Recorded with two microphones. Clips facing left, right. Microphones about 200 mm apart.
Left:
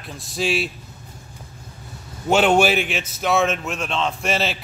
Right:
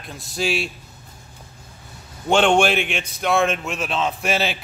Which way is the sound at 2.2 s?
5° left (ahead or behind).